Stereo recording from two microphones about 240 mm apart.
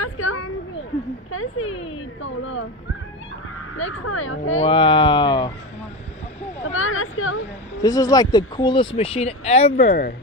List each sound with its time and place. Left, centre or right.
0.0 s a sound: left
1.3 s speech: left
3.7 s speech: left
4.6 s speech: left
6.7 s speech: left
7.8 s speech: centre; by 10.1 s left